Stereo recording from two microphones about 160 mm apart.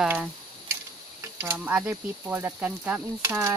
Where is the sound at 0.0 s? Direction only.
10° right (ahead or behind).